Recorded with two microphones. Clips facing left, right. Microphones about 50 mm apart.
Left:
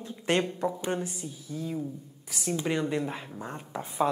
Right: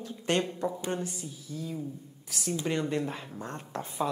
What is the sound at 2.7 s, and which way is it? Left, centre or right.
Speech, centre.